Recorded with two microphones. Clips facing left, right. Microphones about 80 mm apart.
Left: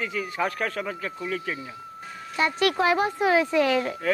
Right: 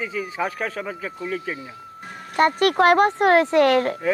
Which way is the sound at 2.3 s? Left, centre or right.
Right.